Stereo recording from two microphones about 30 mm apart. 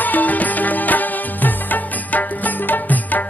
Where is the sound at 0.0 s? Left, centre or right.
Left.